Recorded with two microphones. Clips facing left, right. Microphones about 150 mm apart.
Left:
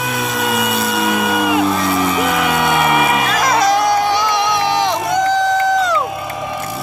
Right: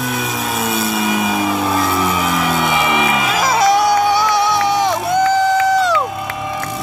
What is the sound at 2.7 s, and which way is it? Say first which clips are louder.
Music: left 2 dB; 50° left (ahead or behind).